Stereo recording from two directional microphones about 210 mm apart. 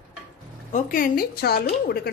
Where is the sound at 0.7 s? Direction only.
40° left (ahead or behind).